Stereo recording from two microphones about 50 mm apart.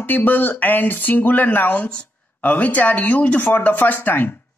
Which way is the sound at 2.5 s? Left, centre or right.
Left.